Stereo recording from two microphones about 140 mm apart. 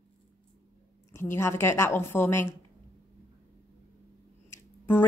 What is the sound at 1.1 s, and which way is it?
A woman's voice, 20° left (ahead or behind).